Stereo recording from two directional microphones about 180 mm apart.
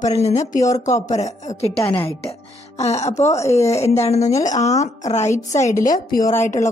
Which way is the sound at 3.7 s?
35° left (ahead or behind).